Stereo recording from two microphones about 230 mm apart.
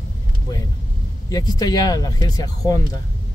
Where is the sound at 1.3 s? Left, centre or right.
Centre.